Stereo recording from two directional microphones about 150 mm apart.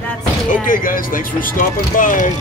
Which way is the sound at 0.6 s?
65° left (ahead or behind).